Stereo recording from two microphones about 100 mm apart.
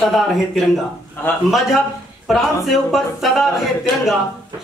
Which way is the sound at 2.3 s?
Centre (ahead or behind).